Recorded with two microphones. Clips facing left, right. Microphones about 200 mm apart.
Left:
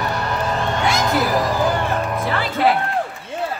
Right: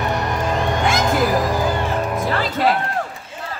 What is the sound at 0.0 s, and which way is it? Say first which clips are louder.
Music: right 1 dB; 20° right (ahead or behind).